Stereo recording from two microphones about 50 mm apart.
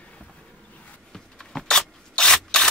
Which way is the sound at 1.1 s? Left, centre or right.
Centre.